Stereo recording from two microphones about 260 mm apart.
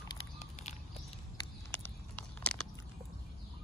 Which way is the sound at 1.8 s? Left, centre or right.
Centre.